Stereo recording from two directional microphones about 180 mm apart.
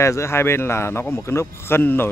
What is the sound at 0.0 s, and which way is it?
A man's voice, 15° left (ahead or behind).